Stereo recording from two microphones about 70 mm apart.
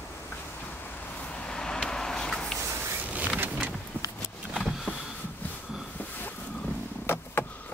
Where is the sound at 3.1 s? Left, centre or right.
Right.